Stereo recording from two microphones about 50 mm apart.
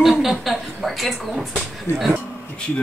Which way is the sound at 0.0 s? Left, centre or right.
Centre.